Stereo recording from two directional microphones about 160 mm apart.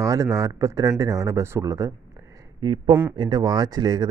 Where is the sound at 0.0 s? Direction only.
20° right (ahead or behind).